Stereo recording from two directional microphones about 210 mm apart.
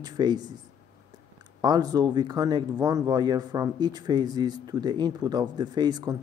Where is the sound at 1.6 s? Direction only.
20° right (ahead or behind).